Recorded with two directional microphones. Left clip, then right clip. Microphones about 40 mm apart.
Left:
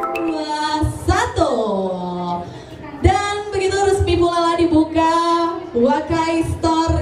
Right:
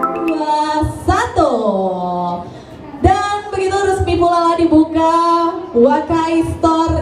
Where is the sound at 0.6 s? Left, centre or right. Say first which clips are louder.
Right 4 dB; left.